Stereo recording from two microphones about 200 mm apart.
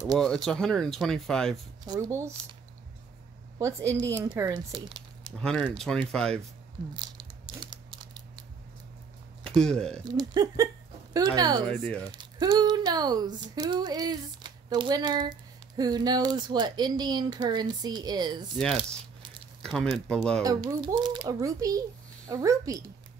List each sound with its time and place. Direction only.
0.2 s speech: 5° left (ahead or behind)
1.9 s speech: 15° right (ahead or behind)
3.5 s a woman's voice: 15° right (ahead or behind)
5.4 s speech: 5° left (ahead or behind)
6.9 s crumpling: 20° right (ahead or behind)
9.4 s speech: 5° left (ahead or behind)
10.1 s speech: 20° right (ahead or behind)
11.6 s speech: 10° left (ahead or behind)
12.1 s speech: 25° right (ahead or behind)
18.6 s speech: 5° left (ahead or behind)
20.4 s speech: 25° right (ahead or behind)